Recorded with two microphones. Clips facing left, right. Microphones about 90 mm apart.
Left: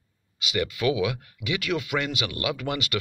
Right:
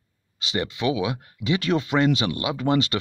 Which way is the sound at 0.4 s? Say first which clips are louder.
Even; 30° right (ahead or behind).